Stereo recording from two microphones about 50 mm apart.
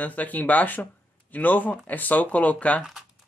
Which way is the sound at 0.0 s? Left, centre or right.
Left.